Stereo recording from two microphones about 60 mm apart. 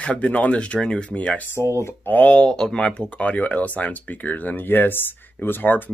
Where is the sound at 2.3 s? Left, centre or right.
Centre.